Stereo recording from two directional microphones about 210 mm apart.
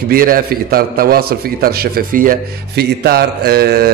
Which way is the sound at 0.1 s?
45° right (ahead or behind).